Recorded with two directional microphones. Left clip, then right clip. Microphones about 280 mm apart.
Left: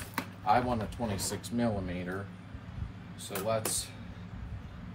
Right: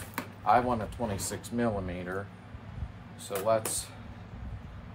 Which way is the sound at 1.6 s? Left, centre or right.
Centre.